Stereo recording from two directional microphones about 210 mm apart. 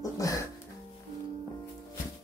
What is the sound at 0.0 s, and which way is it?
Music, 15° left (ahead or behind).